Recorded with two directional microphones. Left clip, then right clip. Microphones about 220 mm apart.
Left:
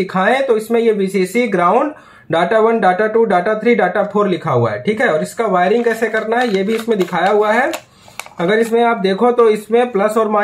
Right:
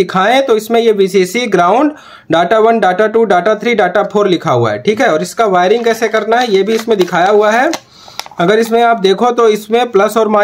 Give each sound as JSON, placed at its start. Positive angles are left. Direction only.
{"t": 0.0, "sound": "speech", "side_deg": -50}